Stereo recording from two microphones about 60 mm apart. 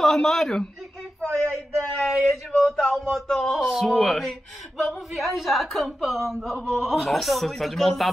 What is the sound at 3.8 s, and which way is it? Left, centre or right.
A woman's voice, centre.